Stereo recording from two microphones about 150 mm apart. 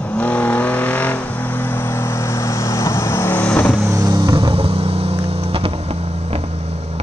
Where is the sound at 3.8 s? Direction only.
20° right (ahead or behind).